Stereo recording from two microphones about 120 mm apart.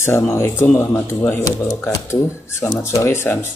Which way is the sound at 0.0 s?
20° left (ahead or behind).